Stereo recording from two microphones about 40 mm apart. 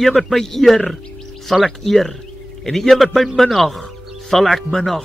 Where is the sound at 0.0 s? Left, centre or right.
Centre.